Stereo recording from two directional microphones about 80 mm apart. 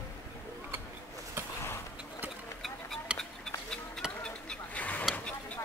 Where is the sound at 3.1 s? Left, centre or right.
Centre.